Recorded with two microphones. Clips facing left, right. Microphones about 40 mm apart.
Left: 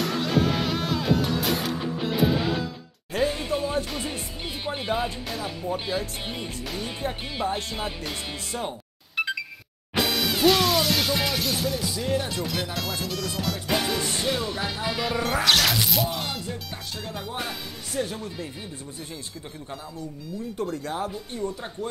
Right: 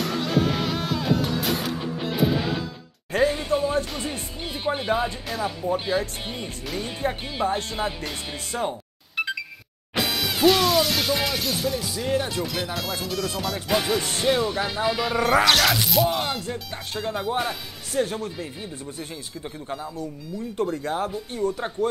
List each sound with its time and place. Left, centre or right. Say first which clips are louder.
0.0 s music: even; centre
17.0 s speech: right 8 dB; centre
20.6 s speech: right 4 dB; right